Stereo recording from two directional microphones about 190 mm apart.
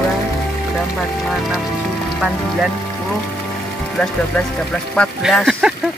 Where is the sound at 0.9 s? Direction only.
Centre (ahead or behind).